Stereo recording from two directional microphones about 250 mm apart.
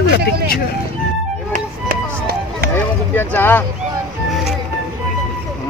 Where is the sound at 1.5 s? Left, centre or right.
Right.